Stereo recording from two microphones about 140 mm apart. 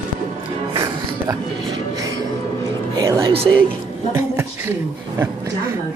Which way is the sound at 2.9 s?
20° right (ahead or behind).